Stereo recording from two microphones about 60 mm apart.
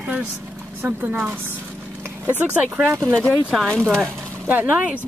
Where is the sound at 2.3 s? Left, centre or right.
Right.